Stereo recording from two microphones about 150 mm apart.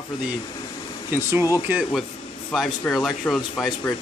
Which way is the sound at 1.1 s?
15° right (ahead or behind).